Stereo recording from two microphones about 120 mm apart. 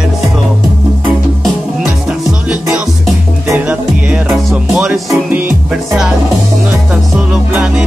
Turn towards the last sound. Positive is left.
turn(degrees=-5)  # may be behind; listen again after turning